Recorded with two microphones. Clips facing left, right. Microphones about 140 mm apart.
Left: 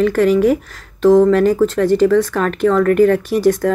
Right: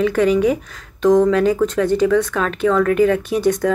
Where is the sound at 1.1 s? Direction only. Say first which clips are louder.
Left 3 dB; 5° left (ahead or behind).